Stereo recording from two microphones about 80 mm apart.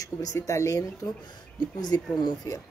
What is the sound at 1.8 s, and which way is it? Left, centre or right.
Speech, left.